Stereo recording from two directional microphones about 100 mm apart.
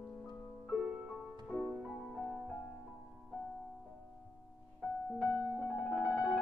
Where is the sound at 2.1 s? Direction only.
5° left (ahead or behind).